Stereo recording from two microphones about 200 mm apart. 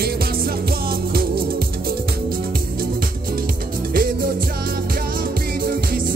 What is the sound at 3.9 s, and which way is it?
Music, 45° right (ahead or behind).